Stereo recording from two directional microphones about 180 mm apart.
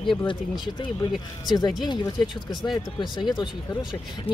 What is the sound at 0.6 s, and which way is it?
Speech, 25° left (ahead or behind).